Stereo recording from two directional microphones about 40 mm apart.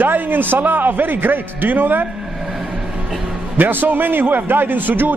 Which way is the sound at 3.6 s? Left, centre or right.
Right.